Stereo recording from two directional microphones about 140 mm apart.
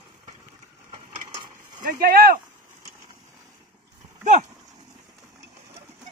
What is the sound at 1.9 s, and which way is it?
Speech, 90° right.